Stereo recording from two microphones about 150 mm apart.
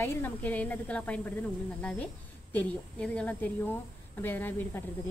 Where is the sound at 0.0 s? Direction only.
10° left (ahead or behind).